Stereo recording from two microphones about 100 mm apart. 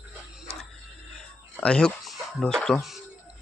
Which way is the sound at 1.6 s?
10° left (ahead or behind).